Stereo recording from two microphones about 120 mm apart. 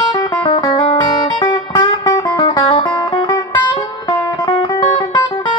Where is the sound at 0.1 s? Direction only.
35° left (ahead or behind).